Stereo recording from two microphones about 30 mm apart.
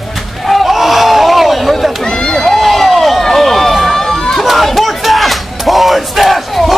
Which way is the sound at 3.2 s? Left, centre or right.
Centre.